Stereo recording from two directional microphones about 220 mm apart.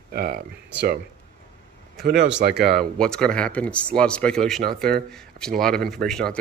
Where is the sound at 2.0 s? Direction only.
50° right (ahead or behind).